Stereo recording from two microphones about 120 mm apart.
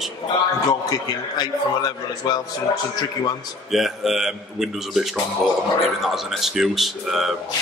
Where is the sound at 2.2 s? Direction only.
35° left (ahead or behind).